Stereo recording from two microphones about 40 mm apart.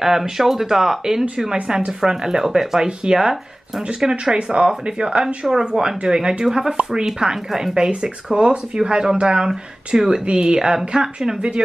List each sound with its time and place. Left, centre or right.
0.0 s speech: centre